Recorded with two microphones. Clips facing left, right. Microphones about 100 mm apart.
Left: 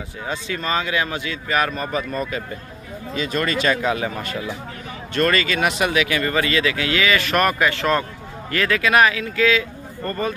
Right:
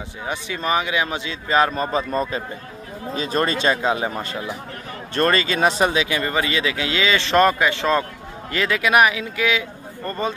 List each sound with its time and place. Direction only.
0.3 s speech: 20° right (ahead or behind)